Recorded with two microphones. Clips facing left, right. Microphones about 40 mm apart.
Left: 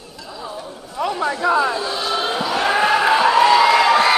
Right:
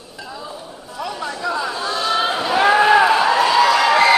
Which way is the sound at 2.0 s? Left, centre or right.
Centre.